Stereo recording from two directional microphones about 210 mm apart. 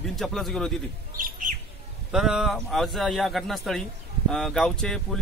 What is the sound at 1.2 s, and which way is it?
Bird, 40° right (ahead or behind).